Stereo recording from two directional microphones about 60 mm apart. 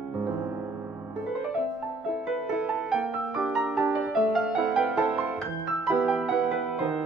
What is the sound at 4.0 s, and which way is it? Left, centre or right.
Music, centre.